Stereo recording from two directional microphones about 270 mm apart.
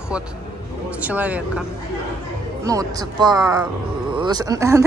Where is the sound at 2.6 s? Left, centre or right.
Centre.